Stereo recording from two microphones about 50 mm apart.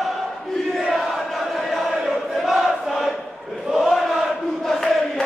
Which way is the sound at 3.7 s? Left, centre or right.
Centre.